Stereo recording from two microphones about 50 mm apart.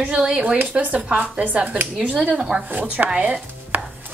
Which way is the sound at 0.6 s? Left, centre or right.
Right.